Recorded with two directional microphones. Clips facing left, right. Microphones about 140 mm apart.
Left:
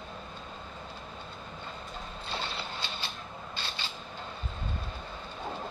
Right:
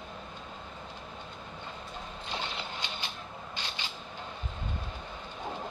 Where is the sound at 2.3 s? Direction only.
15° right (ahead or behind).